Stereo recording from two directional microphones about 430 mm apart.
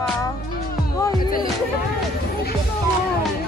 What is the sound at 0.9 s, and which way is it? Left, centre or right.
Music, centre.